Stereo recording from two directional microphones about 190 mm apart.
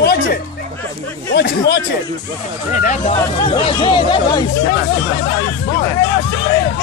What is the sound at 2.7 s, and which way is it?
Speech, 40° left (ahead or behind).